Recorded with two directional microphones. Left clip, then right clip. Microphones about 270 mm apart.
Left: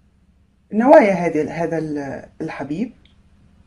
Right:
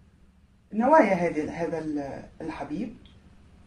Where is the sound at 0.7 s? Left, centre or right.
Left.